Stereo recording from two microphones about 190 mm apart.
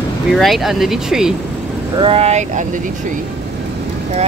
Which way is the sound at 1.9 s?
30° right (ahead or behind).